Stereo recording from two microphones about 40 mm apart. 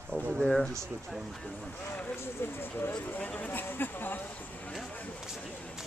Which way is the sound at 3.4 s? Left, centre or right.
Left.